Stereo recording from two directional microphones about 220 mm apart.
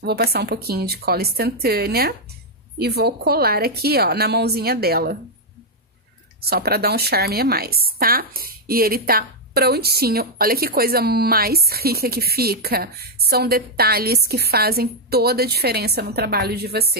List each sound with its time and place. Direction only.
0.0 s a woman's voice: 45° right (ahead or behind)
6.4 s a woman's voice: 45° right (ahead or behind)